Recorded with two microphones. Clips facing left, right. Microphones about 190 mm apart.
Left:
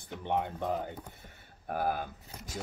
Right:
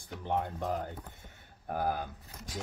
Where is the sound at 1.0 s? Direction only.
Centre (ahead or behind).